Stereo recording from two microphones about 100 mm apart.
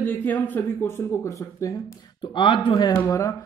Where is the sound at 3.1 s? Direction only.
30° left (ahead or behind).